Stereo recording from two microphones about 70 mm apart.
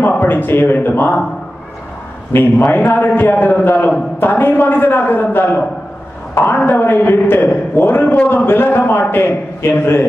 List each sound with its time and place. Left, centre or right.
0.2 s a man's voice: left
2.3 s a man's voice: left